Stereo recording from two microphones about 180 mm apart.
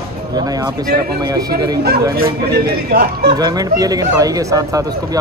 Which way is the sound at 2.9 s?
60° right (ahead or behind).